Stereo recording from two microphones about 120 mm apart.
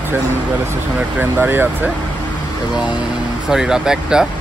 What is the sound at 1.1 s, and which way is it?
Speech, 15° right (ahead or behind).